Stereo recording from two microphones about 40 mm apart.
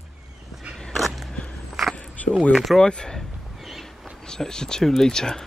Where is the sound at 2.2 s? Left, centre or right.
Left.